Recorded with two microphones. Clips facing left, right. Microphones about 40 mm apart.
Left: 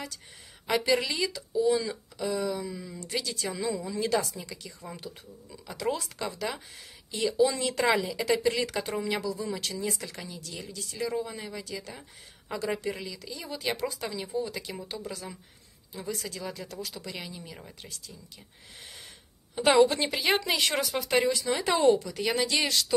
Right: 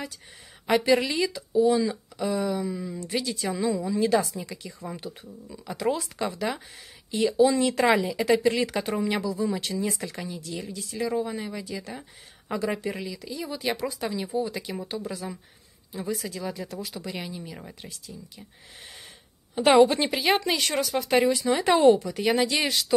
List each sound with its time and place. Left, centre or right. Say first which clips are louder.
0.7 s speech: right 4 dB; right
4.2 s a woman's voice: right 4 dB; right
8.4 s a woman's voice: right 4 dB; right
8.7 s speech: right 4 dB; right
10.4 s a woman's voice: right 5 dB; right
13.0 s speech: right 5 dB; centre
19.5 s a woman's voice: right 4 dB; centre
20.1 s speech: right 3 dB; centre
21.3 s speech: right 5 dB; centre
21.7 s speech: right 4 dB; right
22.1 s speech: right 4 dB; centre